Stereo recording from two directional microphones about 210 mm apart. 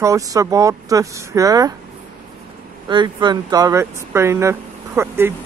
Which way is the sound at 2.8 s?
20° right (ahead or behind).